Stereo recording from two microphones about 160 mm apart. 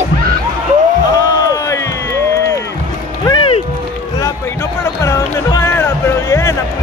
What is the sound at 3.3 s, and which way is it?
Music, 35° left (ahead or behind).